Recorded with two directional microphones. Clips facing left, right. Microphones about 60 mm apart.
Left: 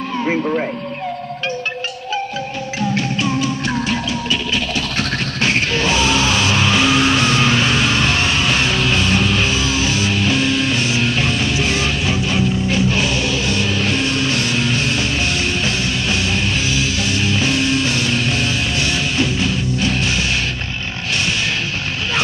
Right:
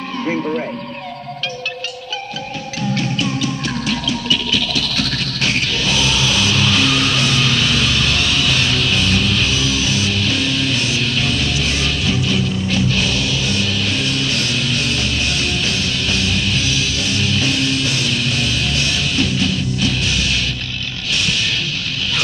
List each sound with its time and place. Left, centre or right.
4.3 s music: left
16.3 s music: left
20.1 s music: left